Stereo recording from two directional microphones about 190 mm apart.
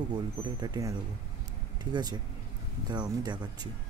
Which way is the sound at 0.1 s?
20° right (ahead or behind).